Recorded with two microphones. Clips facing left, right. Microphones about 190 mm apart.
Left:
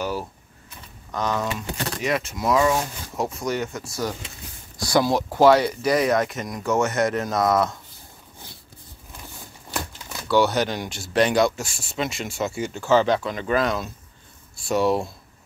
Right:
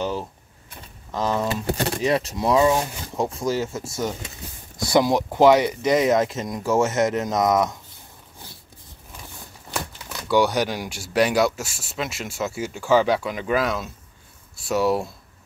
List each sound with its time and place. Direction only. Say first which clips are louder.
0.0 s a sound: right 1 dB; 20° right (ahead or behind)
1.1 s speech: right 2 dB; 25° right (ahead or behind)
10.2 s speech: even; 15° right (ahead or behind)